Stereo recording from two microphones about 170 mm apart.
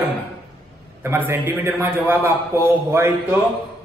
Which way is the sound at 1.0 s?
15° right (ahead or behind).